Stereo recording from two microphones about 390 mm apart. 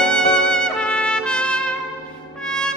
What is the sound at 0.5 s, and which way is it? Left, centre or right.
Trumpet, centre.